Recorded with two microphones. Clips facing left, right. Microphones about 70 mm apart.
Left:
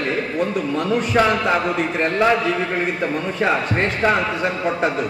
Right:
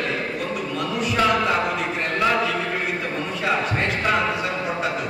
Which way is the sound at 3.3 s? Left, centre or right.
Left.